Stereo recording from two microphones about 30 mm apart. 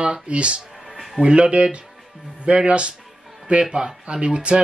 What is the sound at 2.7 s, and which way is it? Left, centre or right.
Speech, right.